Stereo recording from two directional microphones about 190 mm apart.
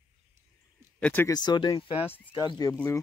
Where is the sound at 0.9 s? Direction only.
10° left (ahead or behind).